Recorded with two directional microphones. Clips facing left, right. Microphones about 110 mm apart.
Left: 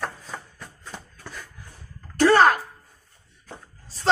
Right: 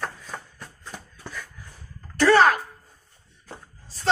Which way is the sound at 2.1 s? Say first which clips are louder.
Even; 45° left (ahead or behind).